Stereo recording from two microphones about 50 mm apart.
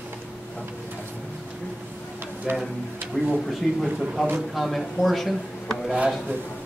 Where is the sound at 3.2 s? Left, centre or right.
Centre.